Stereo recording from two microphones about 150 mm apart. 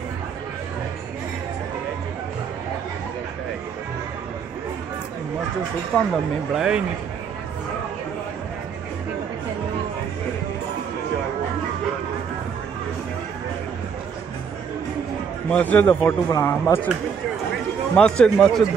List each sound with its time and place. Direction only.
6.5 s speech: 5° right (ahead or behind)
15.5 s speech: 10° left (ahead or behind)
17.9 s speech: 5° left (ahead or behind)